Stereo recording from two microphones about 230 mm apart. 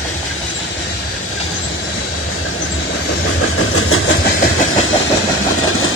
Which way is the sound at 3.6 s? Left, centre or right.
Left.